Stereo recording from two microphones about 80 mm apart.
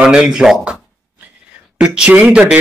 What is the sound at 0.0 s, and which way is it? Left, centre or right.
Speech, centre.